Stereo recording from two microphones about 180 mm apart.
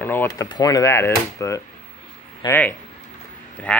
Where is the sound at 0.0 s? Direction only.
10° left (ahead or behind).